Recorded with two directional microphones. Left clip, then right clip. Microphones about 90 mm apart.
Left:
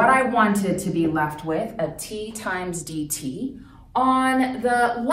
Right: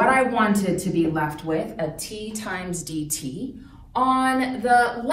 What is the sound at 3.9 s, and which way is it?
Speech, 40° left (ahead or behind).